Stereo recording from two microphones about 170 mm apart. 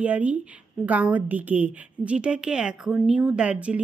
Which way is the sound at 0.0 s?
10° right (ahead or behind).